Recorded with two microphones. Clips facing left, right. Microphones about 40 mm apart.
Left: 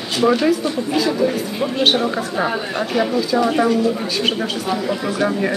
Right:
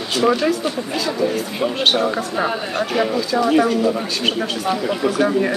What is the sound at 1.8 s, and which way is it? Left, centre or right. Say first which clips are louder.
Speech: even; centre.